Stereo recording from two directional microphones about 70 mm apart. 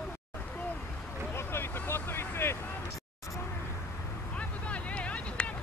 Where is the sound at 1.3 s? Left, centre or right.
Left.